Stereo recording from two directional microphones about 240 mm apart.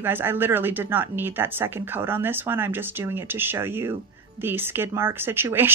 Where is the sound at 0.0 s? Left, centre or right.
Centre.